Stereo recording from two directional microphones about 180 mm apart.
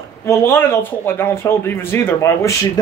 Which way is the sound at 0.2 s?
15° left (ahead or behind).